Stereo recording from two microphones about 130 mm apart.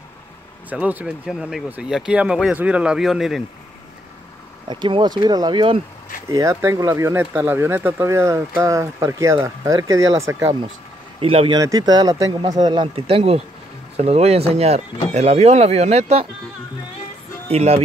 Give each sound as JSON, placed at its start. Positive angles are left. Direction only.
{"t": 0.7, "sound": "speech", "side_deg": -10}
{"t": 4.6, "sound": "speech", "side_deg": -35}
{"t": 6.3, "sound": "speech", "side_deg": -25}
{"t": 11.1, "sound": "speech", "side_deg": -45}
{"t": 11.6, "sound": "speech", "side_deg": -30}
{"t": 12.6, "sound": "speech", "side_deg": -40}
{"t": 17.5, "sound": "speech", "side_deg": -50}